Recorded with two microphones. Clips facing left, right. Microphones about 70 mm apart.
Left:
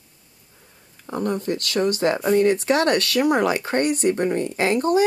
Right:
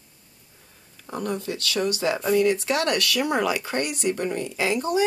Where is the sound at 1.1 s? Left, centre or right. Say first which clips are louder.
Left 5 dB; left.